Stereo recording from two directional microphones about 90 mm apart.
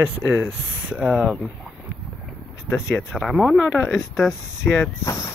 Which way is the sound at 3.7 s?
25° left (ahead or behind).